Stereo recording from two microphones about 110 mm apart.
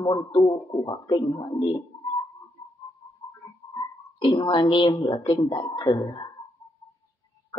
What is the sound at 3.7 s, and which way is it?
Speech, 50° left (ahead or behind).